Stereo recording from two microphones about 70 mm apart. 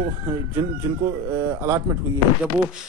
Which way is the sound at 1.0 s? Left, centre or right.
Right.